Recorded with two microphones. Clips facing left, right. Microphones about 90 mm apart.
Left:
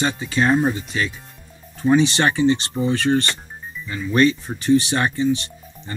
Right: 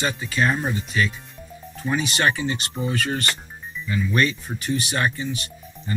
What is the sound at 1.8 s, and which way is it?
Speech, 30° left (ahead or behind).